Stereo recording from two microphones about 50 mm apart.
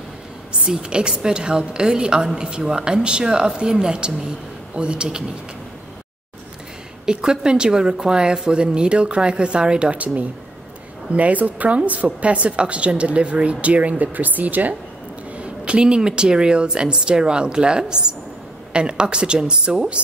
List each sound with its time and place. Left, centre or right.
0.5 s a woman's voice: centre
7.1 s a woman's voice: centre; by 14.8 s right
15.3 s a woman's voice: right